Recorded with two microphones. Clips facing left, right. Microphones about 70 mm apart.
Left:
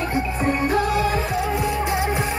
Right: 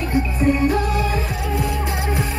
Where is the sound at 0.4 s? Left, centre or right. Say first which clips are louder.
Right 2 dB; left.